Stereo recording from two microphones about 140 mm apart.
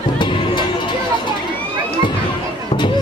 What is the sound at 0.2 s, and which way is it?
Music, 35° left (ahead or behind).